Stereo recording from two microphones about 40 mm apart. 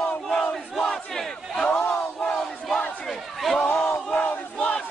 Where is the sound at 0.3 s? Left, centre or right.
Centre.